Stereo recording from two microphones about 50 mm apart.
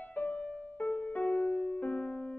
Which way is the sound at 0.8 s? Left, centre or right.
Left.